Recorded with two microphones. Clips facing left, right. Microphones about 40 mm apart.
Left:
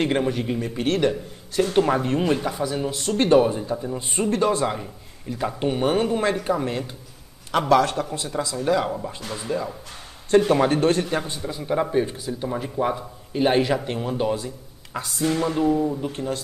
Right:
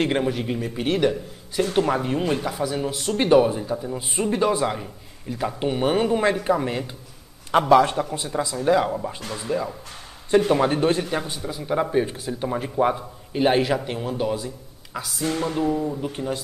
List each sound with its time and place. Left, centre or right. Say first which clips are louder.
0.0 s speech: even; centre
8.4 s speech: right 2 dB; right
8.8 s speech: right 1 dB; centre
11.1 s speech: left 1 dB; centre
12.9 s speech: even; centre